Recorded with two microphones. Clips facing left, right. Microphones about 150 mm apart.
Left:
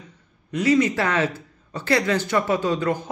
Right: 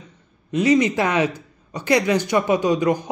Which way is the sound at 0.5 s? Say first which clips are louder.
Right 2 dB; 20° right (ahead or behind).